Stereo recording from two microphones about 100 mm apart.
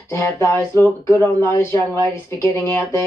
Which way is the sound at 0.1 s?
25° left (ahead or behind).